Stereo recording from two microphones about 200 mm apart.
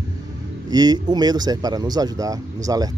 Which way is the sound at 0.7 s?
20° right (ahead or behind).